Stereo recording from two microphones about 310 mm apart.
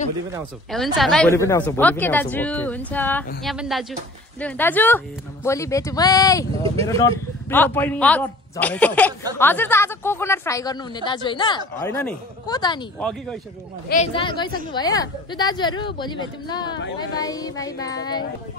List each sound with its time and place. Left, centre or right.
0.7 s a woman's voice: centre
13.8 s speech: left